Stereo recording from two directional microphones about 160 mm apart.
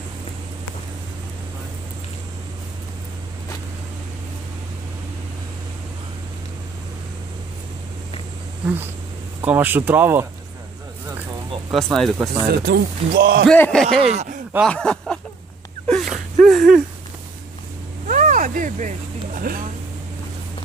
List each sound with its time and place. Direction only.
9.4 s speech: 10° right (ahead or behind)
11.7 s speech: centre (ahead or behind)
12.4 s speech: 85° right
13.5 s speech: 5° left (ahead or behind)
13.9 s speech: 45° right (ahead or behind)
14.7 s speech: 5° left (ahead or behind)
15.9 s a sound: centre (ahead or behind)
18.0 s vehicle: 55° right (ahead or behind)